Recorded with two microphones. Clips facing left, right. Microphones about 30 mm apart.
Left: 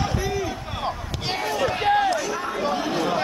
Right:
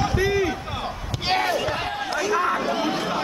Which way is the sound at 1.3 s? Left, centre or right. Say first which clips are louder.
Right 5 dB; right.